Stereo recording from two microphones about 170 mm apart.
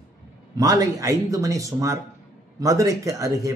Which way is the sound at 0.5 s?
20° right (ahead or behind).